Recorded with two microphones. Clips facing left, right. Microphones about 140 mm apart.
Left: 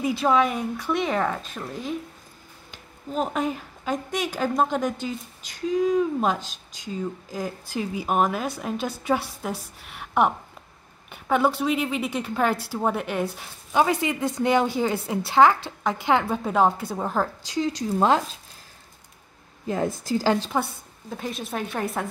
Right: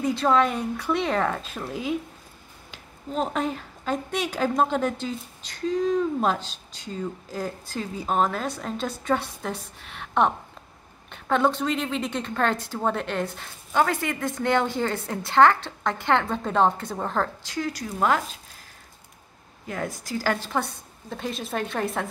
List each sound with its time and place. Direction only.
0.0 s a woman's voice: 5° left (ahead or behind)
17.6 s a woman's voice: 20° left (ahead or behind)
19.7 s a woman's voice: 25° left (ahead or behind)
21.1 s speech: centre (ahead or behind)